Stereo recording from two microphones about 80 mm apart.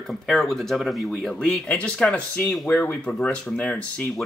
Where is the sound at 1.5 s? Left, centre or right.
Centre.